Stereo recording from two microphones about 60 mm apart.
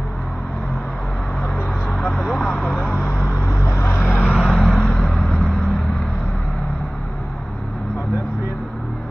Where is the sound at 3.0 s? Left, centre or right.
Left.